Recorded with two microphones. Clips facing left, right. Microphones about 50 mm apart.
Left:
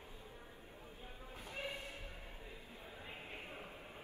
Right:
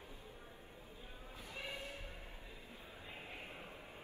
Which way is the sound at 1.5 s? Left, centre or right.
Left.